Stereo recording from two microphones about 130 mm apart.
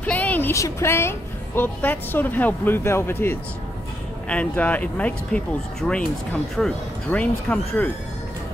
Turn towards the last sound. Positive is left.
turn(degrees=10)  # may be behind; listen again after turning